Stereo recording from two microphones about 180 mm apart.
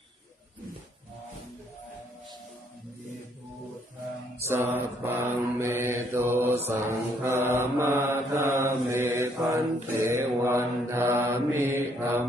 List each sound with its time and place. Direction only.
4.5 s mantra: 15° right (ahead or behind)